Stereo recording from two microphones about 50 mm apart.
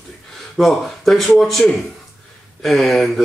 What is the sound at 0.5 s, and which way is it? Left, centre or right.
Speech, centre.